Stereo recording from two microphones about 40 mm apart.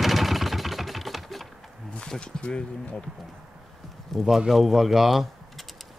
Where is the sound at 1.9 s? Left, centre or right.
Left.